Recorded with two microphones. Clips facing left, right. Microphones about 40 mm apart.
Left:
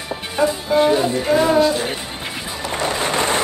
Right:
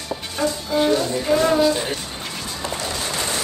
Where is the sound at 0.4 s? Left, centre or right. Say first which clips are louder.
Left 5 dB; left.